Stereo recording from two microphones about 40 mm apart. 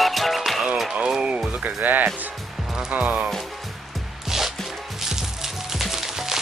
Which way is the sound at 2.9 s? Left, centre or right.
Right.